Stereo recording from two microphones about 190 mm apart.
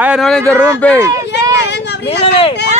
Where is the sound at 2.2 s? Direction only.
30° left (ahead or behind).